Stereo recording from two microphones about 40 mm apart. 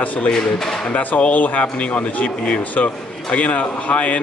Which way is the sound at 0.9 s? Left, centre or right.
Left.